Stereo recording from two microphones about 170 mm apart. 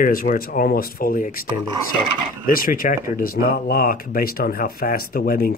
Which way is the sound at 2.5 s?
55° left (ahead or behind).